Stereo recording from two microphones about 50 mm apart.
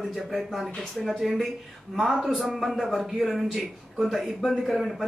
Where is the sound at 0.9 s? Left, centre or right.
Centre.